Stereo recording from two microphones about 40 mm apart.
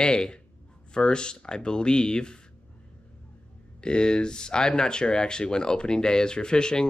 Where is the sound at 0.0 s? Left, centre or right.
Left.